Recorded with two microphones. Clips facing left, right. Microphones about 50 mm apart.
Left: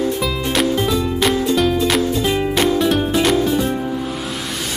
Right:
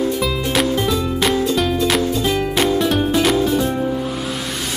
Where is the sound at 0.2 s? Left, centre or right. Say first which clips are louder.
Even; centre.